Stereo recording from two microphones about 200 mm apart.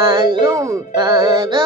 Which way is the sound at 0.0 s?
25° right (ahead or behind).